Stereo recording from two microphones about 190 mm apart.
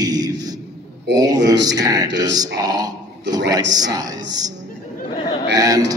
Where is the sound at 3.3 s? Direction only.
65° right (ahead or behind).